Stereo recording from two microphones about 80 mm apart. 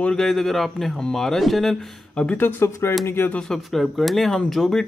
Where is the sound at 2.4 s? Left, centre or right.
Left.